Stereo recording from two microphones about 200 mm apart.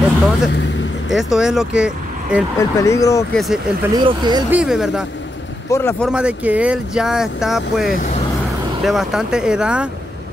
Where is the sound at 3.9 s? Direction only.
20° right (ahead or behind).